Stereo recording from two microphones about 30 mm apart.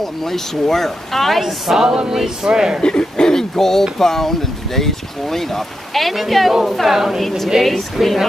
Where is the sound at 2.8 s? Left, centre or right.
Left.